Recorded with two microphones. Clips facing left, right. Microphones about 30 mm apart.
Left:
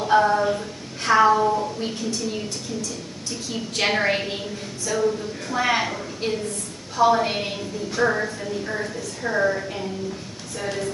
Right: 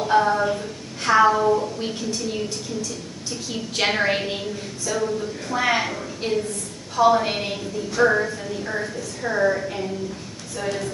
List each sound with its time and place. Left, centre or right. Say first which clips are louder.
0.0 s a woman's voice: left 1 dB; centre
3.7 s a woman's voice: even; centre